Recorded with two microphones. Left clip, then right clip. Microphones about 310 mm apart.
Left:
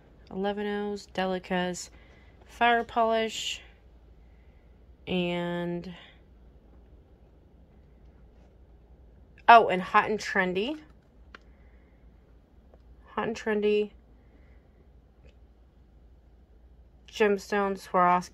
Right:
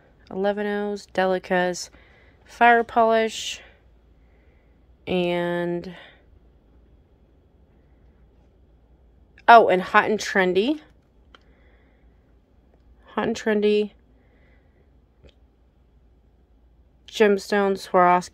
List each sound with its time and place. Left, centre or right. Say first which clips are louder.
0.2 s speech: right 7 dB; centre
5.0 s speech: right 7 dB; centre
9.3 s speech: right 5 dB; centre
13.0 s speech: right 6 dB; right
17.0 s speech: right 6 dB; right